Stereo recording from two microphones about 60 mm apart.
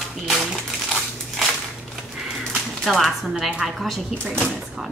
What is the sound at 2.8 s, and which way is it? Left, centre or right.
Speech, centre.